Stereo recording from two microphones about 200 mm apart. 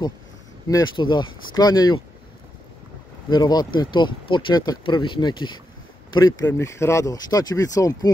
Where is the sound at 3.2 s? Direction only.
20° left (ahead or behind).